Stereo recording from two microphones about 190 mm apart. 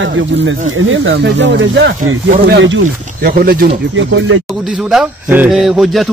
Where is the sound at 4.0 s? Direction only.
80° right.